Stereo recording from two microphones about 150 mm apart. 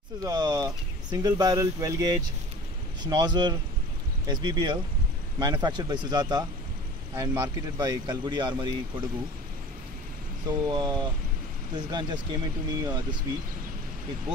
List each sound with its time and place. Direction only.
0.2 s speech: 25° right (ahead or behind)
10.4 s speech: 25° right (ahead or behind)